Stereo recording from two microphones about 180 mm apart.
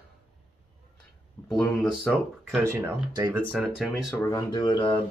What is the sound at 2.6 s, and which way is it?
Speech, 15° right (ahead or behind).